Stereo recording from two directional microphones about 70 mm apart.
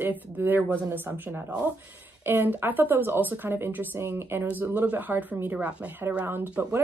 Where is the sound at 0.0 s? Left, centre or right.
Right.